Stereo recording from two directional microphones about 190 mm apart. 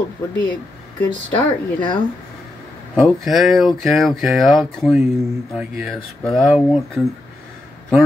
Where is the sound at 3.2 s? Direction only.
Centre (ahead or behind).